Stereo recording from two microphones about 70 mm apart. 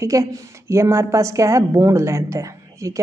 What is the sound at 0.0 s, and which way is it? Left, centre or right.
A woman's voice, right.